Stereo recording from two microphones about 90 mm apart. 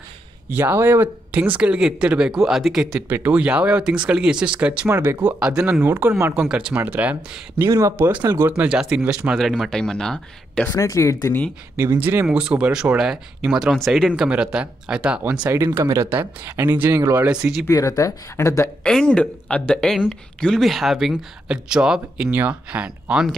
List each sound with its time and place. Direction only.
0.5 s speech: 25° right (ahead or behind); by 3.0 s 5° right (ahead or behind)
3.1 s speech: 20° right (ahead or behind)
4.8 s speech: 25° right (ahead or behind)
5.2 s speech: 10° right (ahead or behind)
5.8 s speech: 20° right (ahead or behind)
8.2 s speech: 35° right (ahead or behind)
8.5 s speech: 15° right (ahead or behind)
9.3 s speech: centre (ahead or behind)
10.7 s speech: 35° left (ahead or behind)
12.0 s speech: 20° right (ahead or behind)
15.5 s speech: 30° right (ahead or behind)
17.6 s speech: 35° left (ahead or behind)
18.8 s speech: 10° left (ahead or behind); by 23.3 s 10° right (ahead or behind)